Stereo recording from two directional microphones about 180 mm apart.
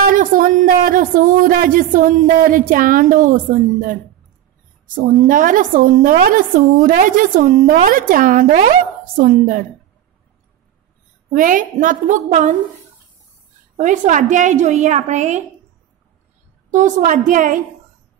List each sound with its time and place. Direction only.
0.0 s a woman's voice: 50° right (ahead or behind)
11.3 s a woman's voice: 50° right (ahead or behind)
13.7 s a woman's voice: 45° right (ahead or behind)
16.7 s a woman's voice: 45° right (ahead or behind)